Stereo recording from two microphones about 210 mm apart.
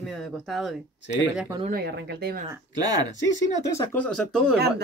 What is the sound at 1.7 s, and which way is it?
Speech, 45° right (ahead or behind).